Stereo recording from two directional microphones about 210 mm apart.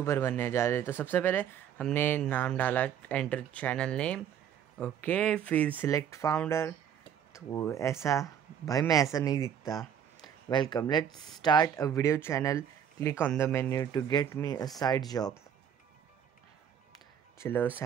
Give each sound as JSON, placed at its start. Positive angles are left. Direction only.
{"t": 0.0, "sound": "speech", "side_deg": 10}
{"t": 17.4, "sound": "speech", "side_deg": 10}